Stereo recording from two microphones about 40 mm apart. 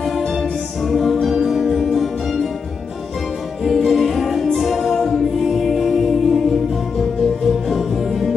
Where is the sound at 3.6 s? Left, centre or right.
Centre.